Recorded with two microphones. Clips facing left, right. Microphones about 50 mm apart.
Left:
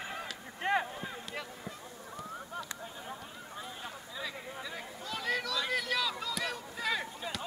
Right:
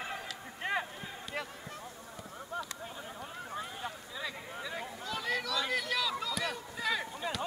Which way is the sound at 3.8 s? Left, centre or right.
Centre.